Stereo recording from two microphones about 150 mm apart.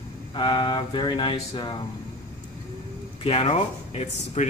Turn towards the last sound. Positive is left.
turn(degrees=45)  # may be behind; listen again after turning